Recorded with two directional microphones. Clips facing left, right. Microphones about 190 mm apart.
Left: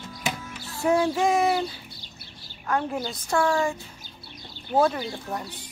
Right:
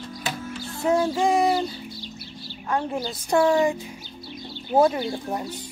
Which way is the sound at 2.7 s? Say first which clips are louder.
Right 1 dB; 5° right (ahead or behind).